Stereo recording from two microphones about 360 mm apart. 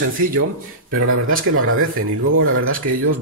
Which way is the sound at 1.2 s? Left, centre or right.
Right.